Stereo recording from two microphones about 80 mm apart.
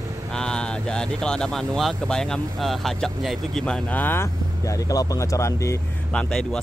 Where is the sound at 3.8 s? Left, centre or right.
Left.